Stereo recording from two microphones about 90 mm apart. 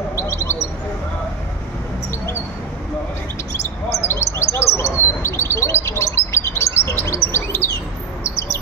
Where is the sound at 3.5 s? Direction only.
30° left (ahead or behind).